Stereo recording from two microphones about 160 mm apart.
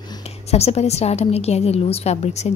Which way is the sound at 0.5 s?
40° left (ahead or behind).